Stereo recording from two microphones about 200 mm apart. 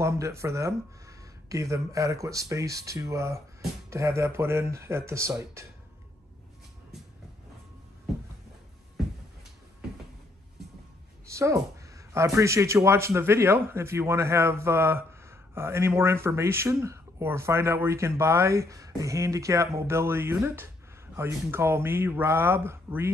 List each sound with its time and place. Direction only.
0.0 s speech: 15° right (ahead or behind)
8.9 s a sound: centre (ahead or behind)
11.3 s speech: 15° right (ahead or behind)